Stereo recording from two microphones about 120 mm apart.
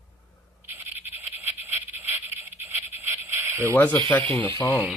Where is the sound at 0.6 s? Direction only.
15° right (ahead or behind).